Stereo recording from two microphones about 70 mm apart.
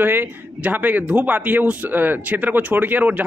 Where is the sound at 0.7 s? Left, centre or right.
Right.